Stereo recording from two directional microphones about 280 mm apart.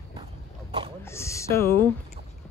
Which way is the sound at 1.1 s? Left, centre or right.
Centre.